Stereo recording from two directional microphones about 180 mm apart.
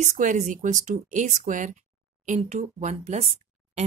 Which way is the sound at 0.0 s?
45° right (ahead or behind).